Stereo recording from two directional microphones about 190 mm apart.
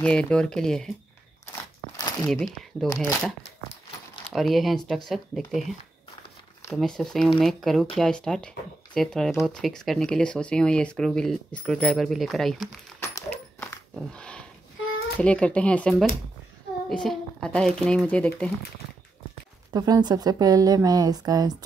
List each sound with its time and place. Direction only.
0.0 s speech: 5° left (ahead or behind)
1.5 s crunch: 15° left (ahead or behind)
2.2 s speech: centre (ahead or behind)
13.3 s a sound: 5° left (ahead or behind)
15.1 s speech: 5° left (ahead or behind)
19.7 s a woman's voice: 20° right (ahead or behind)